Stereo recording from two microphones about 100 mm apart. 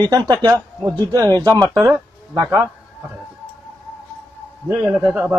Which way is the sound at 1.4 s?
35° right (ahead or behind).